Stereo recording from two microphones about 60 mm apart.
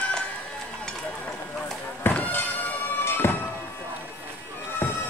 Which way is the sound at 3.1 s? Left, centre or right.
Left.